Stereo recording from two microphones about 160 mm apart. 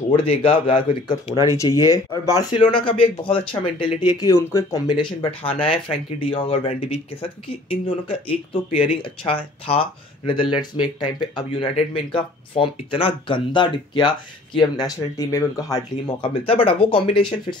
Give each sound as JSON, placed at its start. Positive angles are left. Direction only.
{"t": 0.1, "sound": "speech", "side_deg": 35}
{"t": 16.2, "sound": "speech", "side_deg": 35}